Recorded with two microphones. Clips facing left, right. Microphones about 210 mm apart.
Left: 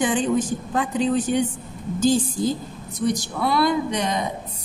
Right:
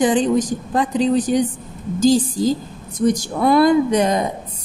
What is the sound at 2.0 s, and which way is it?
Speech, 90° right.